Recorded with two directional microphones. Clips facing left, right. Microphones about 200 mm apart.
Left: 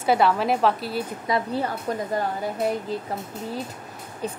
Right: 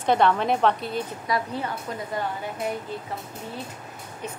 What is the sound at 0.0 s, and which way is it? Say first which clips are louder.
A woman's voice: left 1 dB; 5° left (ahead or behind).